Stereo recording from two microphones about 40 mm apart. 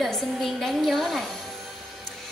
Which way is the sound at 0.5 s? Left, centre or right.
Centre.